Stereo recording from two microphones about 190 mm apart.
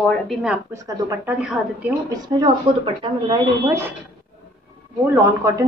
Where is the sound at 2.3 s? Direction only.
20° right (ahead or behind).